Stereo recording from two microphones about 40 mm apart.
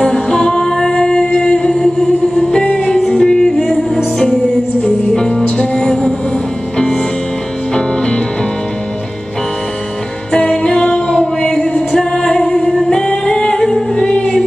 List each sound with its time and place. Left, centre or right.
0.0 s music: left
4.8 s music: centre
7.7 s music: left
10.3 s music: centre
12.9 s singing: left
13.9 s music: left